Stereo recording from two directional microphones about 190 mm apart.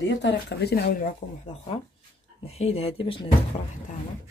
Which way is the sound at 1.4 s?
30° left (ahead or behind).